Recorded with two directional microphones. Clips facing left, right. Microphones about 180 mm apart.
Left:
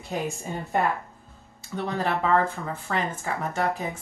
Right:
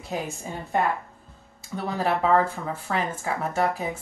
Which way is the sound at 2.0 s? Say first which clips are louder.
Right 3 dB; 5° right (ahead or behind).